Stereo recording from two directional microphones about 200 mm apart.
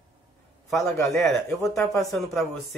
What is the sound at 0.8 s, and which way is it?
Speech, 15° left (ahead or behind).